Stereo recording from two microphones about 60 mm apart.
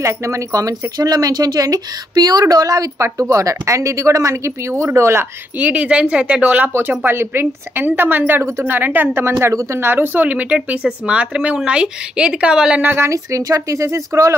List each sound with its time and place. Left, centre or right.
0.0 s speech: right
5.6 s speech: right
6.7 s a woman's voice: right
9.2 s speech: right; by 12.8 s centre
12.8 s a woman's voice: right
13.1 s speech: right